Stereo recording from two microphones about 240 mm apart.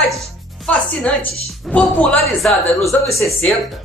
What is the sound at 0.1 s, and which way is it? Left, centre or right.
Music, centre.